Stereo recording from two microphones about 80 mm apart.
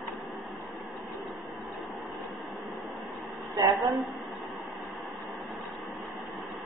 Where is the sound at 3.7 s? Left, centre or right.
Centre.